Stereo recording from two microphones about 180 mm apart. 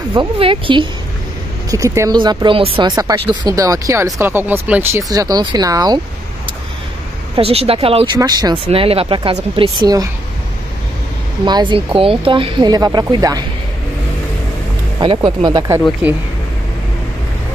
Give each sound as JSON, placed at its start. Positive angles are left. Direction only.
{"t": 0.1, "sound": "speech", "side_deg": -30}
{"t": 1.7, "sound": "speech", "side_deg": -20}
{"t": 3.0, "sound": "speech", "side_deg": -20}
{"t": 5.1, "sound": "speech", "side_deg": -20}
{"t": 7.3, "sound": "speech", "side_deg": -30}
{"t": 11.4, "sound": "speech", "side_deg": -25}
{"t": 15.0, "sound": "speech", "side_deg": -25}
{"t": 16.0, "sound": "speech", "side_deg": -10}